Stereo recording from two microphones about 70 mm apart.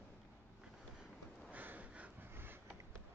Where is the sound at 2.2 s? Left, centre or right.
Right.